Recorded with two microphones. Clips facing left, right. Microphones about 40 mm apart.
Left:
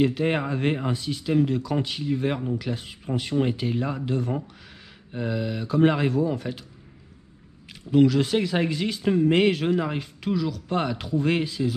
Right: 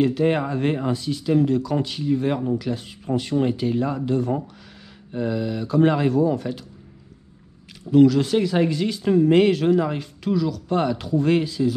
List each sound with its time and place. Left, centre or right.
0.0 s speech: centre
7.9 s speech: centre